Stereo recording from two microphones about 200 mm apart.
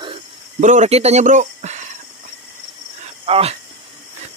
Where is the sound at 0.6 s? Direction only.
35° right (ahead or behind).